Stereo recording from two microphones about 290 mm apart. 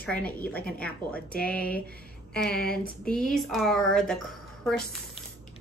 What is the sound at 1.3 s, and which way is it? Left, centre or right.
Speech, left.